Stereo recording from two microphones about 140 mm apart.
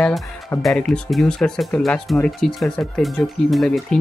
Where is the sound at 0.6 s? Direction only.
5° left (ahead or behind).